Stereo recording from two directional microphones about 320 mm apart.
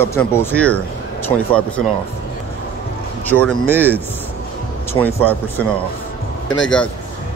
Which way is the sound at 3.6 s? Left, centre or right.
Centre.